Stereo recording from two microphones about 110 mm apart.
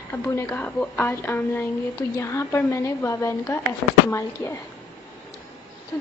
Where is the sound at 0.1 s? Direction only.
20° left (ahead or behind).